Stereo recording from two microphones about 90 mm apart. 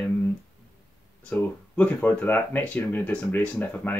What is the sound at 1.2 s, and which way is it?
Speech, 15° left (ahead or behind).